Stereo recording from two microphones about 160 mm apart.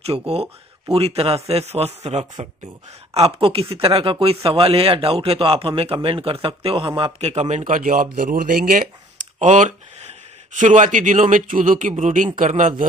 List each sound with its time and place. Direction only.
0.9 s speech: 40° right (ahead or behind); by 8.8 s 60° right (ahead or behind)
9.4 s speech: 45° right (ahead or behind)